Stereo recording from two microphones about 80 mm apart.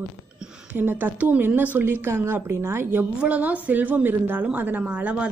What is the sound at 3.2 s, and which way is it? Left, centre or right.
A woman's voice, centre.